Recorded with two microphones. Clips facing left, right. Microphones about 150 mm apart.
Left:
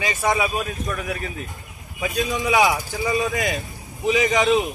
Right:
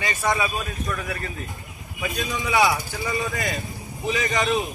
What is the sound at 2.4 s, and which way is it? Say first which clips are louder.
Speech: left 1 dB; 20° left (ahead or behind).